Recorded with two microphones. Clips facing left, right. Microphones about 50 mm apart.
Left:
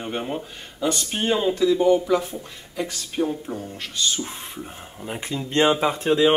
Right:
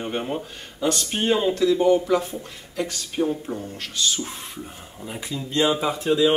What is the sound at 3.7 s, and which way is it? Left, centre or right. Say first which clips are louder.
Speech: left 1 dB; centre.